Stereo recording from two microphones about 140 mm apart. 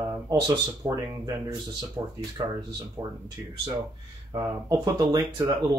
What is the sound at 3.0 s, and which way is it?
Speech, 15° right (ahead or behind).